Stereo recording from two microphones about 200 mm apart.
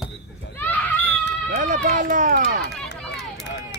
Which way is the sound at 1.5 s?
40° right (ahead or behind).